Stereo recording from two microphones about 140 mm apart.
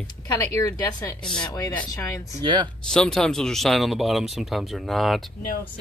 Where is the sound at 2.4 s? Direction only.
30° right (ahead or behind).